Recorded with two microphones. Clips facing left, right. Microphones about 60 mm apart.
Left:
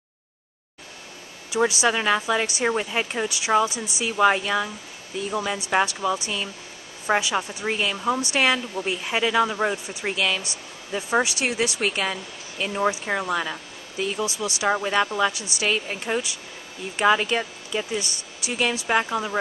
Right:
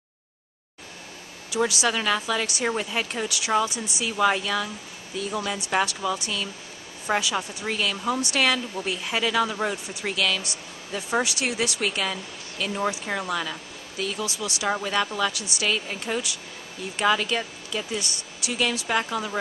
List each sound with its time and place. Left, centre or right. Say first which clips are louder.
1.6 s speech: left 3 dB; centre
7.3 s speech: left 3 dB; left
11.1 s speech: left 3 dB; centre
12.5 s speech: left 3 dB; centre
17.9 s speech: left 2 dB; centre
18.9 s speech: left 3 dB; centre